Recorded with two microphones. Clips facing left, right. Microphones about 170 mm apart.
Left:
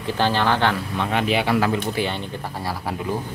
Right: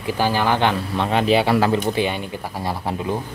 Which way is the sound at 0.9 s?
30° right (ahead or behind).